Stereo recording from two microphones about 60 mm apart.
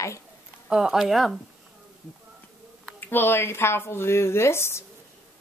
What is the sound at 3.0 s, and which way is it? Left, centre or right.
Speech, left.